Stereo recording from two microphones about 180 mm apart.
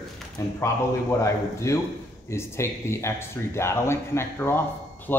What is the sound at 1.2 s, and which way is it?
Speech, 15° left (ahead or behind).